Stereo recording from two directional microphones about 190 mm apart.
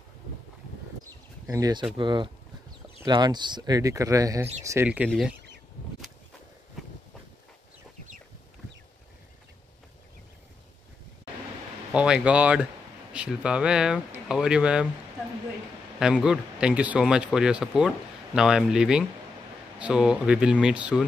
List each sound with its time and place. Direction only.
1.5 s speech: 20° right (ahead or behind)
11.9 s speech: 5° right (ahead or behind)
16.0 s speech: 5° right (ahead or behind)